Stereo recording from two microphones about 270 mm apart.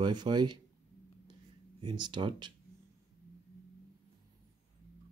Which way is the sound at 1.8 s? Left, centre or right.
Centre.